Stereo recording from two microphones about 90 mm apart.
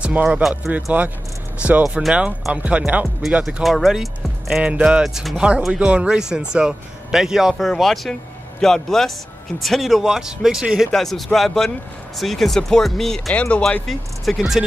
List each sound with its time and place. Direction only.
0.0 s speech: 15° right (ahead or behind)
3.4 s speech: centre (ahead or behind)
10.9 s speech: 5° left (ahead or behind)
13.3 s speech: 15° left (ahead or behind)